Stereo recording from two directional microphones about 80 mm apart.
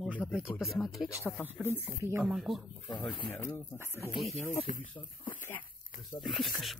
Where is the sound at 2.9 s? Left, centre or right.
Left.